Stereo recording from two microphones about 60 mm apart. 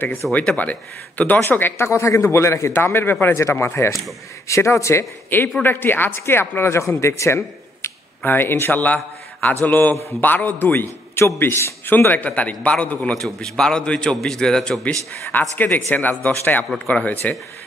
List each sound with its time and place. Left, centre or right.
0.3 s a man's voice: left
2.7 s a man's voice: left
5.6 s a man's voice: left
7.0 s speech: left
8.2 s a man's voice: left
8.8 s a man's voice: left
10.7 s a man's voice: left
13.1 s a man's voice: centre
15.5 s speech: left